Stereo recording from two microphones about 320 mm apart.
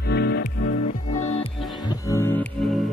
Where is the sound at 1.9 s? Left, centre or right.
Centre.